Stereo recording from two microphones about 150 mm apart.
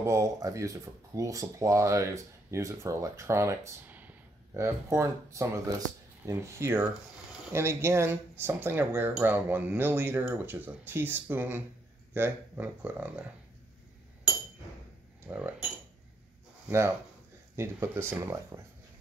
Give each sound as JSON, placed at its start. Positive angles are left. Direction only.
{"t": 0.0, "sound": "speech", "side_deg": -20}
{"t": 15.2, "sound": "speech", "side_deg": -15}
{"t": 16.6, "sound": "speech", "side_deg": -20}